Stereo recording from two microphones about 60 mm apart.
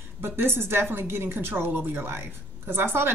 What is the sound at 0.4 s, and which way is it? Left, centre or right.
A woman's voice, right.